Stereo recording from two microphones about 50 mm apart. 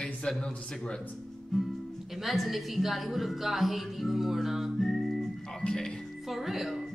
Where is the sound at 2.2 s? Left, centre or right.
Centre.